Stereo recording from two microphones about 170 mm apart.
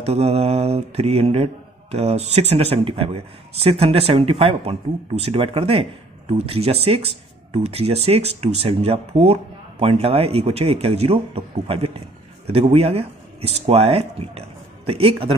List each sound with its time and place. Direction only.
0.0 s mantra: 40° right (ahead or behind)